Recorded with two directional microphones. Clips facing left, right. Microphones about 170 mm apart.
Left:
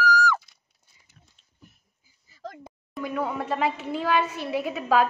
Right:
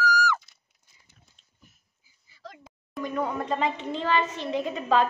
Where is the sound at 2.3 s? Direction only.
45° left (ahead or behind).